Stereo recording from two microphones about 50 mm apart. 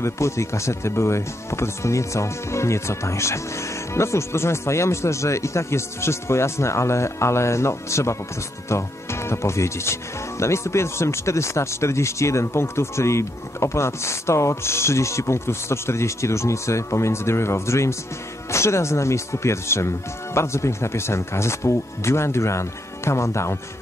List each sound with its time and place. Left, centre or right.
0.0 s speech: left